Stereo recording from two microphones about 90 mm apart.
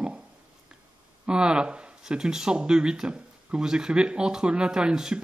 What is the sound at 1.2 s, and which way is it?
Speech, 10° right (ahead or behind).